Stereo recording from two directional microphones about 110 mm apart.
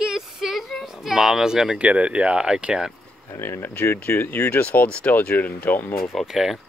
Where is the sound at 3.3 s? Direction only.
25° left (ahead or behind).